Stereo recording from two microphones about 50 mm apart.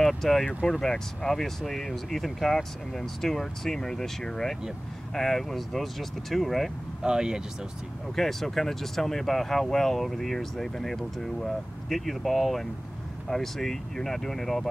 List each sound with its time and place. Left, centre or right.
0.0 s speech: centre
7.0 s speech: centre
8.2 s speech: centre